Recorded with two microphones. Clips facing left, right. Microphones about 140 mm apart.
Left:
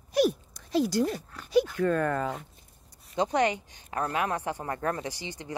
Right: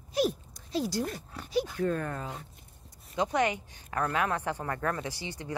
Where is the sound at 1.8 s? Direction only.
80° left.